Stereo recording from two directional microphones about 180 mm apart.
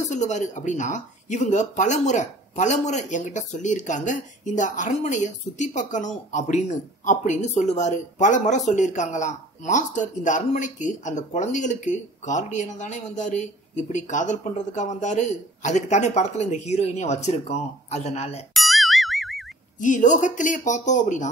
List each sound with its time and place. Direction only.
0.1 s speech: 40° left (ahead or behind)
18.5 s music: centre (ahead or behind)
19.8 s speech: 45° left (ahead or behind)